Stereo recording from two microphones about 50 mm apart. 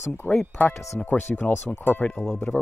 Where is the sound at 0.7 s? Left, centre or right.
Centre.